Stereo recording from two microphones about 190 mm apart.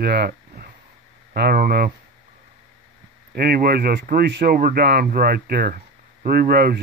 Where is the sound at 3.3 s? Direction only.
55° right (ahead or behind).